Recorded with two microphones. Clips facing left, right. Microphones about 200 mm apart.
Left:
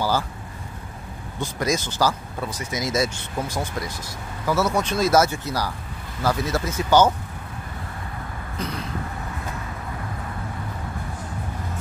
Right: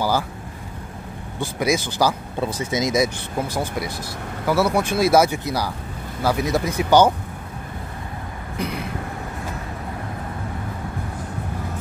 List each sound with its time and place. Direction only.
1.4 s speech: 10° right (ahead or behind)
2.4 s speech: 25° right (ahead or behind)
2.9 s speech: 15° right (ahead or behind)
4.5 s speech: 10° right (ahead or behind)
8.5 s vehicle: 10° right (ahead or behind)